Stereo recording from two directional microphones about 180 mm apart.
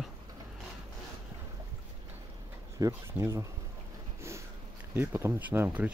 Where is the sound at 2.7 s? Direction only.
20° right (ahead or behind).